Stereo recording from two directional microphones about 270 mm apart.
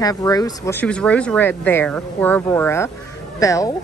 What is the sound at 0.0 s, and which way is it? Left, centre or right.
A woman's voice, centre.